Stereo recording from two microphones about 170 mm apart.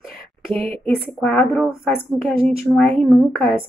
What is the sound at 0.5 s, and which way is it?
Speech, 35° right (ahead or behind).